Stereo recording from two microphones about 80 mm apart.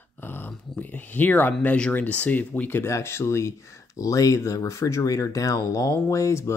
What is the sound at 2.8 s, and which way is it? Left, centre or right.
Speech, left.